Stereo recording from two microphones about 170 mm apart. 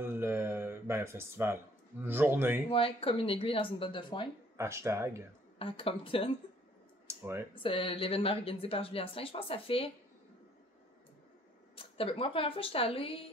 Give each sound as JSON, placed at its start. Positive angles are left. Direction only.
{"t": 0.0, "sound": "a sound", "side_deg": -15}
{"t": 2.0, "sound": "speech", "side_deg": -10}
{"t": 2.7, "sound": "speech", "side_deg": 35}
{"t": 4.6, "sound": "speech", "side_deg": -15}
{"t": 5.6, "sound": "speech", "side_deg": 35}
{"t": 7.1, "sound": "a sound", "side_deg": -15}
{"t": 7.5, "sound": "speech", "side_deg": 30}
{"t": 11.7, "sound": "speech", "side_deg": 35}